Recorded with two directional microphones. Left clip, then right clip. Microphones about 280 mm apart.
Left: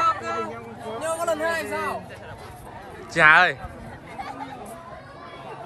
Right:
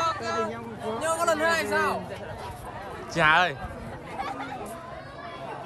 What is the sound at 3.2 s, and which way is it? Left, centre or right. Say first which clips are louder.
Speech: left 6 dB; centre.